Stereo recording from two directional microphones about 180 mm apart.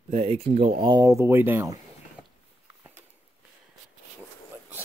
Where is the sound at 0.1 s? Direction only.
35° right (ahead or behind); by 2.2 s 15° right (ahead or behind).